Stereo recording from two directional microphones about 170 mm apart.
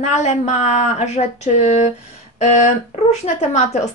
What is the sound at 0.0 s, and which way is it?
Speech, 45° left (ahead or behind).